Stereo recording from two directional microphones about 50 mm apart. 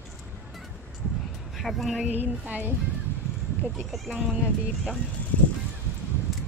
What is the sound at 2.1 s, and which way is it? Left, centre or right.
Speech, right.